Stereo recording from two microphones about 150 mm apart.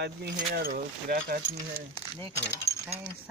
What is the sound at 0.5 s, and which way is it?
Speech, 75° right (ahead or behind).